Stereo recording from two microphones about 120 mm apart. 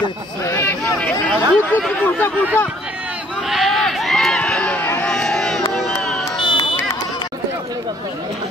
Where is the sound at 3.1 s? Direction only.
5° right (ahead or behind).